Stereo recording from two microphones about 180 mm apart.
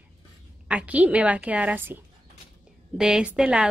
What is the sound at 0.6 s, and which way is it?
A woman's voice, 5° right (ahead or behind).